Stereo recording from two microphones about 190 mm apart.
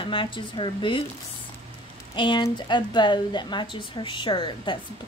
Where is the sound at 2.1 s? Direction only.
25° left (ahead or behind).